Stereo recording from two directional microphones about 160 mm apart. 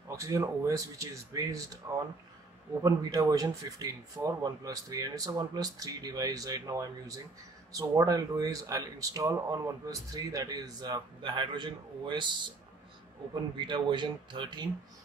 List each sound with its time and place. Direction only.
0.1 s speech: 20° right (ahead or behind)